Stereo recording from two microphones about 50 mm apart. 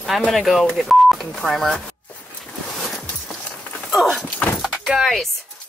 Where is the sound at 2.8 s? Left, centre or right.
Centre.